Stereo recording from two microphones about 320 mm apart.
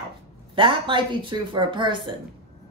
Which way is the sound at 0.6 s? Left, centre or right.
Centre.